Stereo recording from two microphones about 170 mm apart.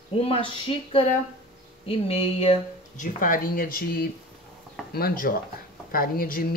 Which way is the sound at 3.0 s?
50° left (ahead or behind).